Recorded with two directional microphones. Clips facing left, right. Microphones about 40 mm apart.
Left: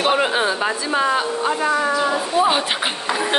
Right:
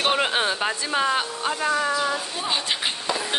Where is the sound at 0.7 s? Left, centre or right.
Left.